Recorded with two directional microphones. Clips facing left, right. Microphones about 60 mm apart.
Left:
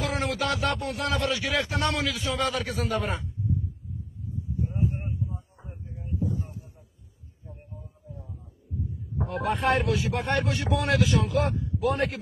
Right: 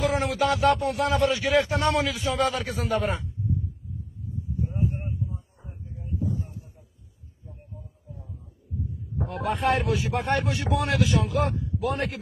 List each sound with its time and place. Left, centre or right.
0.0 s speech: centre
0.5 s a man's voice: right
0.7 s speech: centre
1.0 s a man's voice: right
4.9 s a sound: centre
9.2 s speech: centre